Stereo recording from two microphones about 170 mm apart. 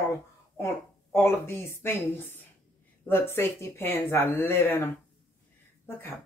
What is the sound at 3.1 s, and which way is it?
Speech, 15° left (ahead or behind).